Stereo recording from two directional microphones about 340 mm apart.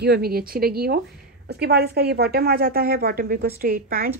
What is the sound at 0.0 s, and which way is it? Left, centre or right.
A woman's voice, right.